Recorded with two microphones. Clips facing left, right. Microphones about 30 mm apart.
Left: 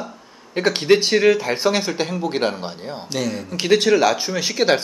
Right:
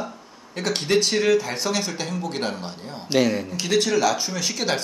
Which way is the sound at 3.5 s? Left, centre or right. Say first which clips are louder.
Left 9 dB; left.